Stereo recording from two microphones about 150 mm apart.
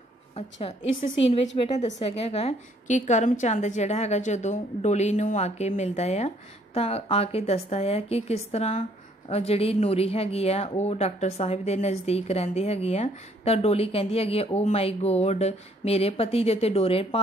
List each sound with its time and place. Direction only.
0.4 s a woman's voice: 45° left (ahead or behind)